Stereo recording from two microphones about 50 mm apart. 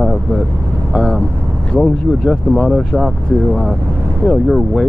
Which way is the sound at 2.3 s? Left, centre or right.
Left.